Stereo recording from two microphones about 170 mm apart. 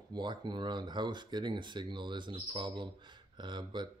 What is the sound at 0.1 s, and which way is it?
Speech, 25° right (ahead or behind).